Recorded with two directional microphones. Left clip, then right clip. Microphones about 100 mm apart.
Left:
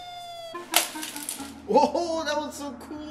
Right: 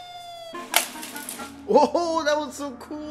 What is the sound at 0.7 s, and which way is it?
Music, 20° right (ahead or behind).